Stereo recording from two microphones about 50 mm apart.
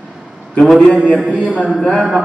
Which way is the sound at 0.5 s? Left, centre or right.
Centre.